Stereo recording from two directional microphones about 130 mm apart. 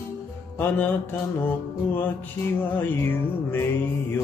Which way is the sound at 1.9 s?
15° left (ahead or behind).